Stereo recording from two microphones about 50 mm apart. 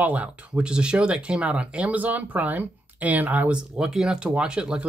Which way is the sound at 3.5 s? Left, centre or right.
Centre.